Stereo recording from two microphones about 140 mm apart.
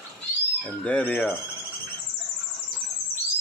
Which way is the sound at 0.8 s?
10° left (ahead or behind).